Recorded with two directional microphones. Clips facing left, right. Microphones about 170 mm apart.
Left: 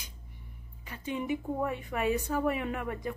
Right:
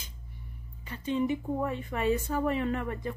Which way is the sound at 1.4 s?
Centre (ahead or behind).